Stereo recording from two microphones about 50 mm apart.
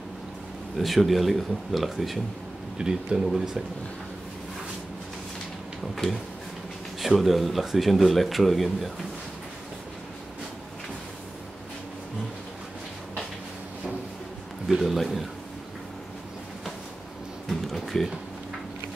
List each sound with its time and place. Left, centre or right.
0.7 s speech: centre
2.8 s speech: centre
7.0 s speech: centre
14.8 s speech: centre
17.5 s a sound: centre